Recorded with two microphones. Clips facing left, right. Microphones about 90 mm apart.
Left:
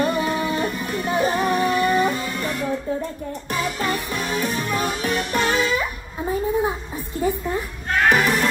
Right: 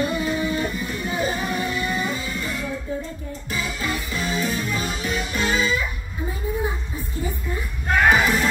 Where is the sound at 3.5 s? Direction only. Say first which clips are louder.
Left 3 dB; 55° left (ahead or behind).